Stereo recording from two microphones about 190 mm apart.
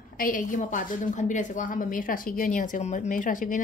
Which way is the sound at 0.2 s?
45° left (ahead or behind).